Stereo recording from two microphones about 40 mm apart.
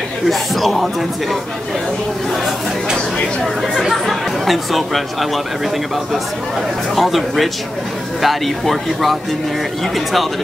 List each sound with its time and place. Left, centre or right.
0.2 s speech: centre
3.9 s speech: centre
7.0 s speech: centre